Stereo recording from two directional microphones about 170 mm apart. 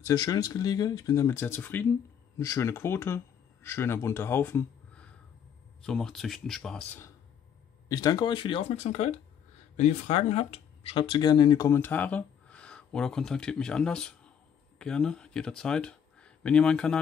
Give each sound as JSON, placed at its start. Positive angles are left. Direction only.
{"t": 0.0, "sound": "speech", "side_deg": 20}
{"t": 7.9, "sound": "speech", "side_deg": 25}